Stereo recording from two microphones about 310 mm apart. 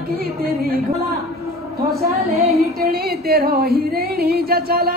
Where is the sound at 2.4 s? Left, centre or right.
Right.